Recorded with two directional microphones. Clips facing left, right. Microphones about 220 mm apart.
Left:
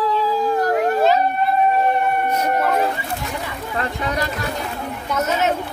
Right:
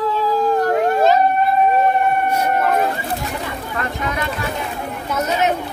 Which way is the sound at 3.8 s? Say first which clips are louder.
Left 1 dB; 35° left (ahead or behind).